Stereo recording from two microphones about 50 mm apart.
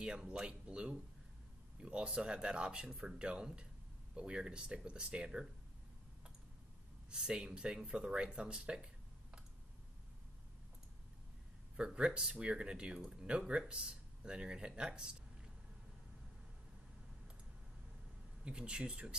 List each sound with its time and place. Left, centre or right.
0.0 s speech: centre
2.9 s speech: centre
3.2 s speech: centre
7.1 s speech: centre
11.7 s speech: centre
18.4 s speech: centre